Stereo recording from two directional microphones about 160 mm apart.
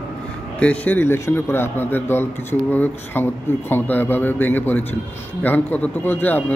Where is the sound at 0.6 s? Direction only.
10° left (ahead or behind).